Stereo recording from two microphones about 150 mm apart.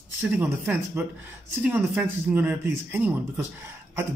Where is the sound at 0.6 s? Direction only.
10° right (ahead or behind).